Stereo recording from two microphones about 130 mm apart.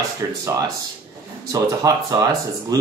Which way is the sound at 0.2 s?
25° right (ahead or behind).